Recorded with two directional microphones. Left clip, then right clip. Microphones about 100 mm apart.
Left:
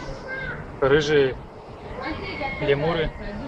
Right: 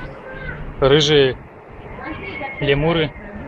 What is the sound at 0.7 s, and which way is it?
Speech, 30° right (ahead or behind).